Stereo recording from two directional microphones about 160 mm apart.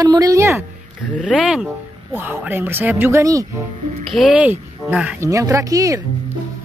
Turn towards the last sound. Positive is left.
turn(degrees=-20)  # may be behind; listen again after turning